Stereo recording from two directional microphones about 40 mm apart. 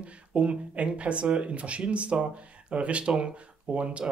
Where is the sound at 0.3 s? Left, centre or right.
Right.